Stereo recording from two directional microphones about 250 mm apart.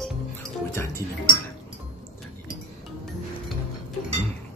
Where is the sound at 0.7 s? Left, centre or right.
Centre.